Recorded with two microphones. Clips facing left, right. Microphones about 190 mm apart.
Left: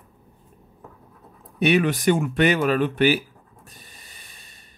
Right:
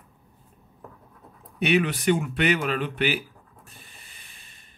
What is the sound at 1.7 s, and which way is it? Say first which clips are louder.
Speech: left 2 dB; 40° left (ahead or behind).